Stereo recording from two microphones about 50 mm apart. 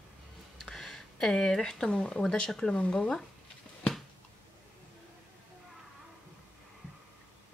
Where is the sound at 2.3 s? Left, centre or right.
Centre.